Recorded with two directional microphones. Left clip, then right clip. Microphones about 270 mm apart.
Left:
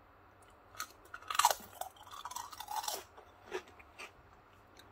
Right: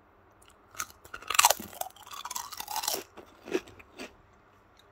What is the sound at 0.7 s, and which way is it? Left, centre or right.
Chewing, right.